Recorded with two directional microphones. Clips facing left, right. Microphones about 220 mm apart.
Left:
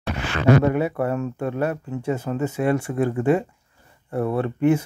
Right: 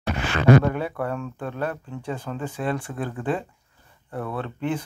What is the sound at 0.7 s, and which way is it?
Speech, 5° left (ahead or behind).